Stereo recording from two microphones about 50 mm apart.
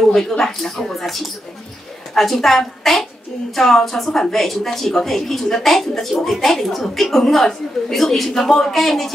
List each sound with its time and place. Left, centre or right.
0.1 s a woman's voice: centre